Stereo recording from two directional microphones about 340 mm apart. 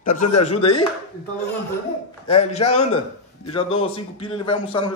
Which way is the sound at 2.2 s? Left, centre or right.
Centre.